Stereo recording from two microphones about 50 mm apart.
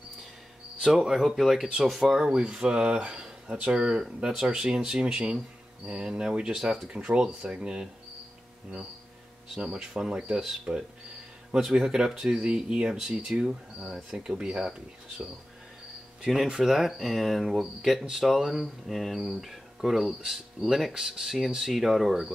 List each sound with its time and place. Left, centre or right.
0.8 s speech: centre
9.6 s speech: centre
16.4 s speech: centre